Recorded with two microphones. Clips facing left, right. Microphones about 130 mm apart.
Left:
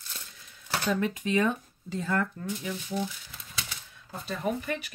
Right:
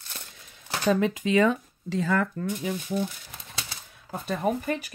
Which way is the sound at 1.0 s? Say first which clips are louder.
Right 4 dB; 90° right.